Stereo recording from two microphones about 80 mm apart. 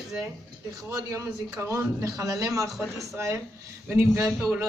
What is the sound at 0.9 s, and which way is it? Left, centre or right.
Speech, right.